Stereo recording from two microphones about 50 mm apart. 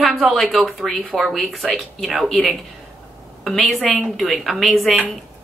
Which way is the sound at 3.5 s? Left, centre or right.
Centre.